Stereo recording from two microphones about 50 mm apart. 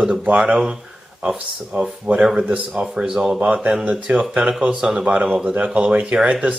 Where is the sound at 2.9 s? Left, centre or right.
Centre.